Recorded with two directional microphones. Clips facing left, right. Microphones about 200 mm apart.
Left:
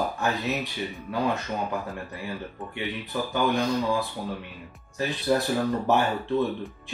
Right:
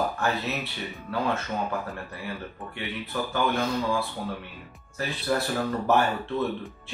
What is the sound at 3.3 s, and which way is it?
Speech, 15° left (ahead or behind).